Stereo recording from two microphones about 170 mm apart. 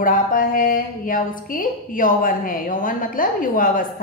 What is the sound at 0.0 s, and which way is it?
A woman's voice, 55° left (ahead or behind).